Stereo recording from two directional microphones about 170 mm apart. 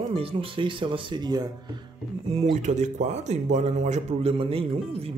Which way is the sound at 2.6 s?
45° right (ahead or behind).